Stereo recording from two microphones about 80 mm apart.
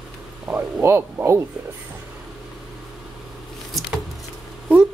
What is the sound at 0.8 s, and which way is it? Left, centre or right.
Speech, right.